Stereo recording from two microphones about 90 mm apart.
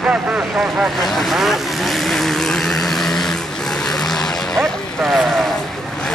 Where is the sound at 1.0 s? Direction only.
Centre (ahead or behind).